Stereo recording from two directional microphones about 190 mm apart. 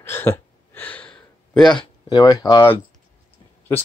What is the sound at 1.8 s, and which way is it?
Speech, 20° left (ahead or behind).